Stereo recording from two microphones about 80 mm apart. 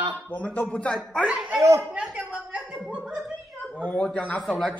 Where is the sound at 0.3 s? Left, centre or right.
Centre.